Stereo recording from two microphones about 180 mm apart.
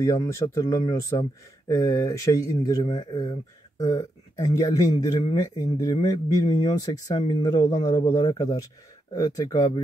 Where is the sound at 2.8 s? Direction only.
30° left (ahead or behind).